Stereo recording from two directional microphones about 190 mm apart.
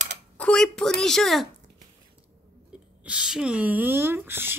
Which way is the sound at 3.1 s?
5° right (ahead or behind).